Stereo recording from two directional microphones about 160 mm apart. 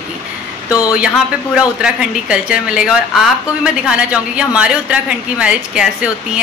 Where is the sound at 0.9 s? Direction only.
5° right (ahead or behind).